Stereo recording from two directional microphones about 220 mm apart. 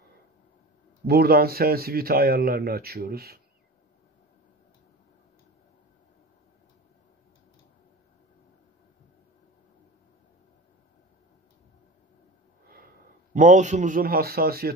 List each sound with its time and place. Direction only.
1.0 s speech: 45° right (ahead or behind)
12.6 s a man's voice: 40° right (ahead or behind)